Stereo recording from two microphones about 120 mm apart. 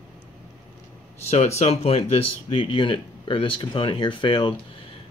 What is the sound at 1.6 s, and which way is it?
Speech, 60° left (ahead or behind).